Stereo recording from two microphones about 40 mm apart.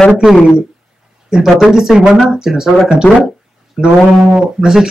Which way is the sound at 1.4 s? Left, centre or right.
Centre.